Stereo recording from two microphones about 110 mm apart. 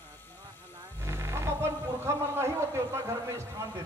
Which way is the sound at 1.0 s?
25° right (ahead or behind).